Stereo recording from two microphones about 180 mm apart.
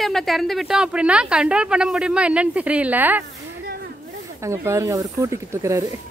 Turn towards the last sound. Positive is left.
turn(degrees=-15)  # may be behind; listen again after turning